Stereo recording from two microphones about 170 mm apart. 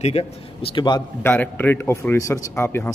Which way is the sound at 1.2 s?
10° left (ahead or behind).